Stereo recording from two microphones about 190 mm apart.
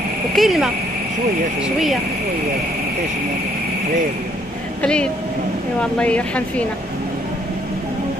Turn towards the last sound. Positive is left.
turn(degrees=5)  # may be behind; listen again after turning